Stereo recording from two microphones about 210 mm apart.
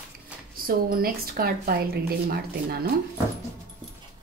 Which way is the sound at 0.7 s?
45° right (ahead or behind).